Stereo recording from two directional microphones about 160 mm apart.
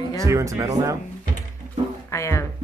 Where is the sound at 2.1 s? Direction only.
20° left (ahead or behind).